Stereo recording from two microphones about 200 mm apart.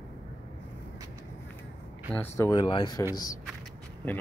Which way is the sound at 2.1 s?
10° left (ahead or behind).